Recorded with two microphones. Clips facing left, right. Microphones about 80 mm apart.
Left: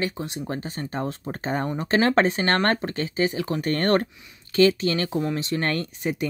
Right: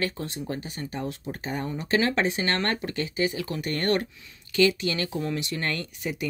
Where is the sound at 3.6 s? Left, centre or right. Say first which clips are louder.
Left 4 dB; left.